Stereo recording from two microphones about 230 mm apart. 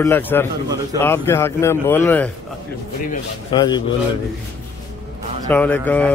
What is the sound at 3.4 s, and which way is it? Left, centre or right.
Speech, centre.